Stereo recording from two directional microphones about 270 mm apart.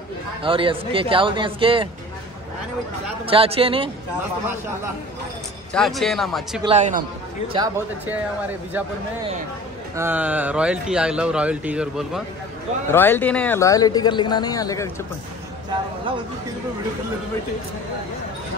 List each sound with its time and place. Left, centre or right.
0.4 s speech: centre
3.3 s speech: right
5.7 s speech: centre
6.6 s speech: right
7.5 s speech: centre
9.9 s speech: centre
12.9 s speech: centre